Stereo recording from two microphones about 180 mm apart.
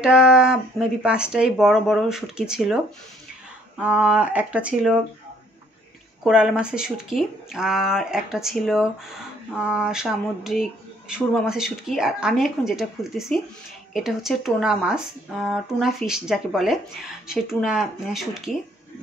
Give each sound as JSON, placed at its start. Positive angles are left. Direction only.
{"t": 0.0, "sound": "speech", "side_deg": -5}
{"t": 6.2, "sound": "speech", "side_deg": -5}